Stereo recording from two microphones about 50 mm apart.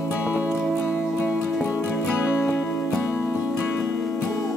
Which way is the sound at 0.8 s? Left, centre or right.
Left.